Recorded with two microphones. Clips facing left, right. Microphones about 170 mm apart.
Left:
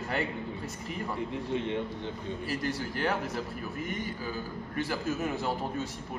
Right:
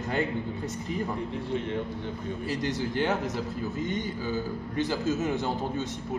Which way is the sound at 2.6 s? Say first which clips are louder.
Right 4 dB; 20° right (ahead or behind).